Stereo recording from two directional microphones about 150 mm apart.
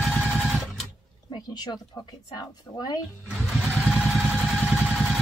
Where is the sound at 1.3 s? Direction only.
30° left (ahead or behind).